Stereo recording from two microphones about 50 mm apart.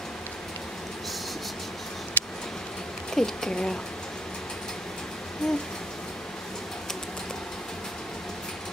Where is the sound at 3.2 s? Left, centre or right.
Centre.